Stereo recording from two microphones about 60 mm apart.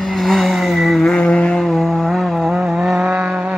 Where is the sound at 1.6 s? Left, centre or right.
Centre.